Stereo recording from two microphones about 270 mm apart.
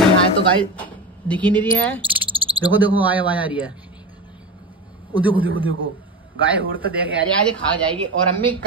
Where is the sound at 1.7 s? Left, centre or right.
Centre.